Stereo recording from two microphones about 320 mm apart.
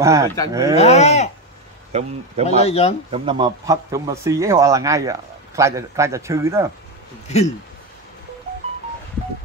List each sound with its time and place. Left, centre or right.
0.0 s speech: centre
0.7 s speech: centre
1.9 s speech: centre
2.6 s speech: centre
3.1 s speech: centre
7.2 s speech: centre